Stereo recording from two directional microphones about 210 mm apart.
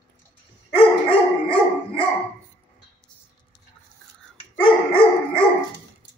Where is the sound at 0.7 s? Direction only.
25° left (ahead or behind).